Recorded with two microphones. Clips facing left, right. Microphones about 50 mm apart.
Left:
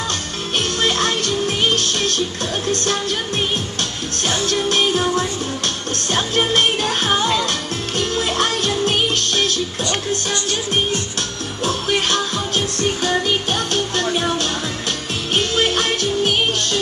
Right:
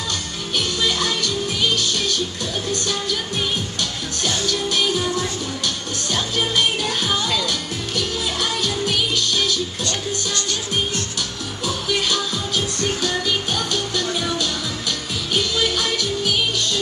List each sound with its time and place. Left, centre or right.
0.6 s music: left
5.6 s music: left
7.4 s music: left
11.9 s music: left
13.5 s music: left